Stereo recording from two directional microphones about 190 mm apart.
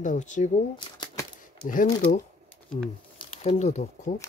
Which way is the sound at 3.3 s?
35° left (ahead or behind).